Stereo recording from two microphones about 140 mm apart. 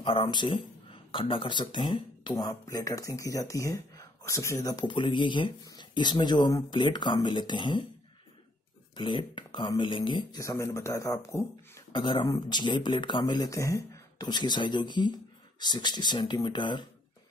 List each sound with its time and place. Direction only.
0.0 s speech: 40° left (ahead or behind)
8.9 s speech: 35° left (ahead or behind)
11.9 s speech: 35° left (ahead or behind)